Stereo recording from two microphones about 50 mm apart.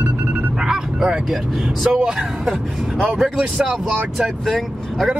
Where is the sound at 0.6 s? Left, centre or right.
Centre.